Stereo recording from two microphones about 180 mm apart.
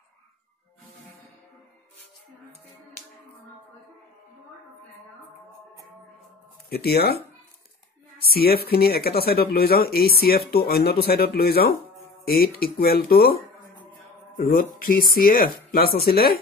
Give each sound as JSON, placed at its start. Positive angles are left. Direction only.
{"t": 6.7, "sound": "speech", "side_deg": 60}
{"t": 8.2, "sound": "speech", "side_deg": 60}